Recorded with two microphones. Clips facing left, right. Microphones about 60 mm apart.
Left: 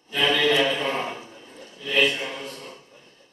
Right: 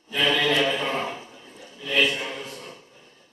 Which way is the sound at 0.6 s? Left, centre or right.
Centre.